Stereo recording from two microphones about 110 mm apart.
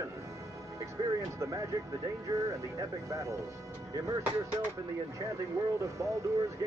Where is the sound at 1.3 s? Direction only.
30° right (ahead or behind).